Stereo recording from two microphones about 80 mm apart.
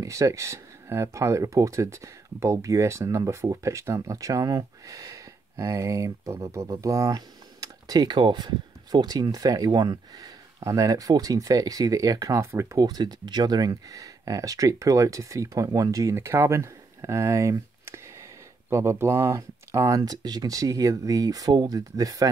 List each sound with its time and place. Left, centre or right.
0.0 s speech: right
12.4 s speech: right
12.7 s speech: right
20.0 s speech: right